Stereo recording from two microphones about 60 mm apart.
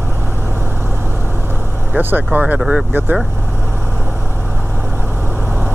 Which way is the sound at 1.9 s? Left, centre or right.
Right.